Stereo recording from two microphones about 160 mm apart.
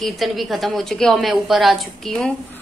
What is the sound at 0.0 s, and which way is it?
A woman's voice, centre (ahead or behind).